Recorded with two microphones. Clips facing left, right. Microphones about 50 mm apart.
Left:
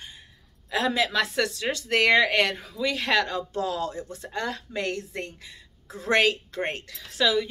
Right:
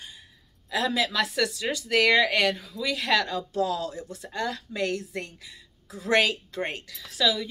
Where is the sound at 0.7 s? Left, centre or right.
Left.